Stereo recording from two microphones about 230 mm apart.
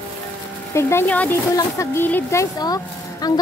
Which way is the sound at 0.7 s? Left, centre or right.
Centre.